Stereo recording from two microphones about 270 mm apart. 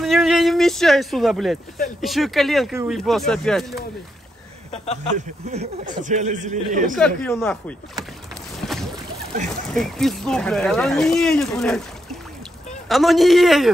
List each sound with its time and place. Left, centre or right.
0.0 s a sound: centre
2.0 s speech: centre
5.1 s a man's voice: right
7.0 s speech: centre
9.8 s speech: centre